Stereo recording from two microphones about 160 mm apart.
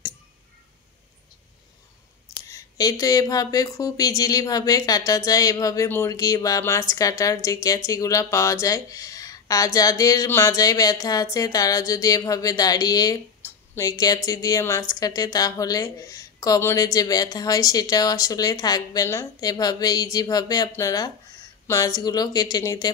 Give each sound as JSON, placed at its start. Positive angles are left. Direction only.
{"t": 2.5, "sound": "speech", "side_deg": 20}